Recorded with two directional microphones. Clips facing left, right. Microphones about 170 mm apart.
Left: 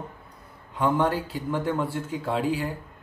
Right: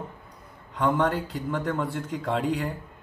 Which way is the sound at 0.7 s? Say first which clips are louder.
Left 1 dB; 10° left (ahead or behind).